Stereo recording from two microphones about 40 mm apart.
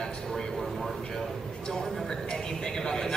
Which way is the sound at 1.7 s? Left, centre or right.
Centre.